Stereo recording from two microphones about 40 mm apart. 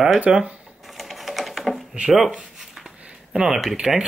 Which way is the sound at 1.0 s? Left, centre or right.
Centre.